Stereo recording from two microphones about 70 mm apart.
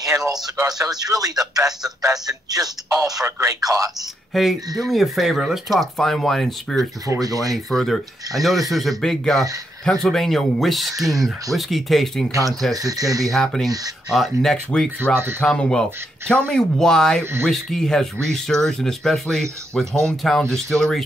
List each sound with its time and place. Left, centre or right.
0.0 s speech: right
3.3 s speech: right
4.3 s speech: centre
7.1 s speech: right
7.5 s speech: centre
12.3 s speech: right
13.2 s speech: centre
15.1 s speech: right
15.4 s speech: centre
17.2 s speech: right
17.5 s speech: centre